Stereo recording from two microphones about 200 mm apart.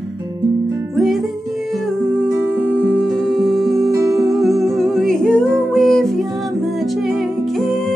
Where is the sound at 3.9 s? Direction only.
15° right (ahead or behind).